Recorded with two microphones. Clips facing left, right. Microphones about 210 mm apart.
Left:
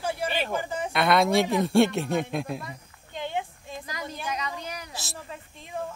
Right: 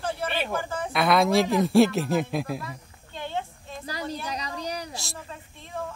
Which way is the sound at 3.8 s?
35° right (ahead or behind).